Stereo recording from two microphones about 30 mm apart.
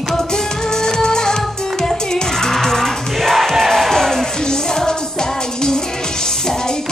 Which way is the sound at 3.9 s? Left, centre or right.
Centre.